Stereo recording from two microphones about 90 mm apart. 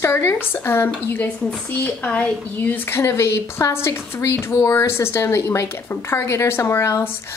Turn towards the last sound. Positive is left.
turn(degrees=30)  # may be behind; listen again after turning